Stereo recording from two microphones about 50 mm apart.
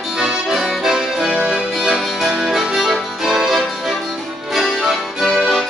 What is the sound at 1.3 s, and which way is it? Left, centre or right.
Music, centre.